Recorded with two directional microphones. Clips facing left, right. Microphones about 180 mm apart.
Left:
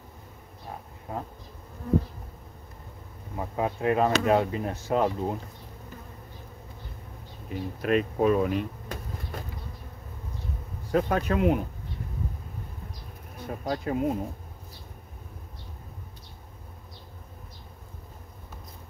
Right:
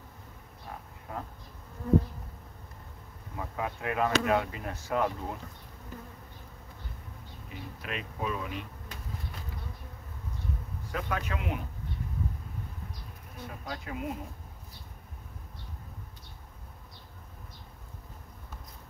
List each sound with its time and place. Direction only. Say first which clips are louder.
3.3 s speech: left 6 dB; 30° left (ahead or behind)
7.4 s speech: left 13 dB; 45° left (ahead or behind)
10.9 s speech: left 10 dB; 40° left (ahead or behind)
13.5 s speech: left 11 dB; 40° left (ahead or behind)